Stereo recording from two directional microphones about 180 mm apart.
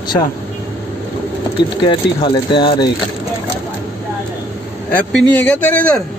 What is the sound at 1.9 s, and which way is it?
Speech, 25° left (ahead or behind).